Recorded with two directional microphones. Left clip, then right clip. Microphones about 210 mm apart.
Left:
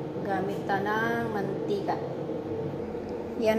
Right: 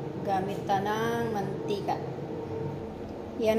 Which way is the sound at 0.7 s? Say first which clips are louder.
Even; 10° right (ahead or behind).